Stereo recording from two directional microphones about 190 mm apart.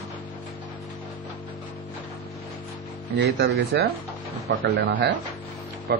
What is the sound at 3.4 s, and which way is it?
Speech, 55° right (ahead or behind).